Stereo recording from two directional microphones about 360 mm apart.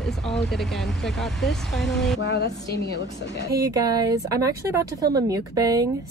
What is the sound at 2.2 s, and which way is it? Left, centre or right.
A woman's voice, left.